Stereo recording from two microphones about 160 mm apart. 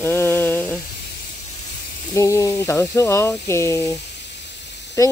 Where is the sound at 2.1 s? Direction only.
20° left (ahead or behind).